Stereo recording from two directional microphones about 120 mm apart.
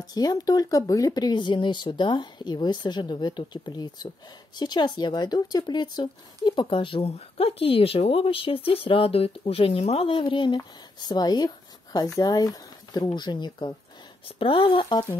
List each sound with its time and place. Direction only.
0.0 s speech: 35° left (ahead or behind)